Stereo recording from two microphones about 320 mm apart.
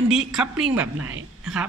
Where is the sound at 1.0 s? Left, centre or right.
Right.